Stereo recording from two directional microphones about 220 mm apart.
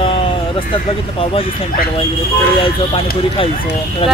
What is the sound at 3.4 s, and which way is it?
Speech, 25° left (ahead or behind).